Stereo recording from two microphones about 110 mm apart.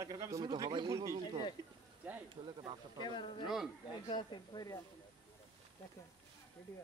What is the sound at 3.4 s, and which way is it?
Speech, 5° right (ahead or behind).